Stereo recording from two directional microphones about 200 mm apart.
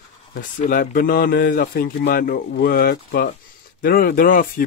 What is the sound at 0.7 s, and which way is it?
Speech, 45° left (ahead or behind).